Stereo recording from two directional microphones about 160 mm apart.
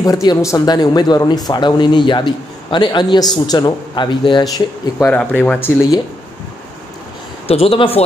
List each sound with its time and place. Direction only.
0.0 s speech: 25° left (ahead or behind)
5.0 s speech: 10° left (ahead or behind)
7.4 s speech: 40° left (ahead or behind)